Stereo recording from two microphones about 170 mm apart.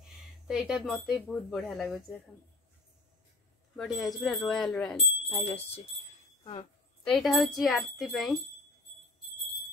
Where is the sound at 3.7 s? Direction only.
Centre (ahead or behind).